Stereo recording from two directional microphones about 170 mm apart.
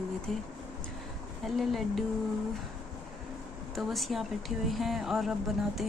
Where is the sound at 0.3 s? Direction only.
Centre (ahead or behind).